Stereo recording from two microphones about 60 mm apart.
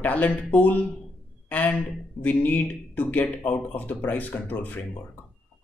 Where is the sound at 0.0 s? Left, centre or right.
Left.